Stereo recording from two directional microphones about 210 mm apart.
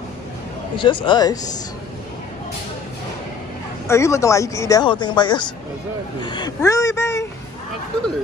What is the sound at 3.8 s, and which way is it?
Speech, 15° left (ahead or behind).